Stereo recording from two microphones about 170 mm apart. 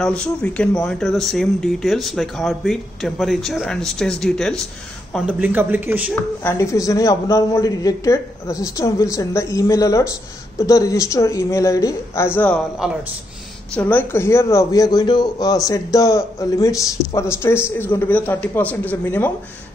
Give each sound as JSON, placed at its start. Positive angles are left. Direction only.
{"t": 0.0, "sound": "speech", "side_deg": 5}
{"t": 5.1, "sound": "a man's voice", "side_deg": -5}
{"t": 6.4, "sound": "speech", "side_deg": 15}
{"t": 12.8, "sound": "speech", "side_deg": -5}
{"t": 13.7, "sound": "speech", "side_deg": 10}